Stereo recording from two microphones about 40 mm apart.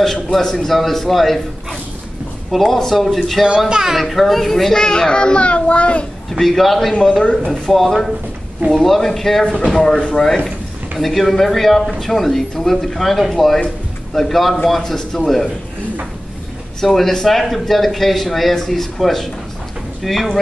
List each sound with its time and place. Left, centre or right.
0.0 s a man's voice: centre
2.5 s a man's voice: centre
3.4 s speech: right
3.9 s a man's voice: centre
4.8 s a child's voice: left
6.3 s a man's voice: centre
6.9 s a child's voice: centre
7.6 s a man's voice: centre
16.8 s a man's voice: centre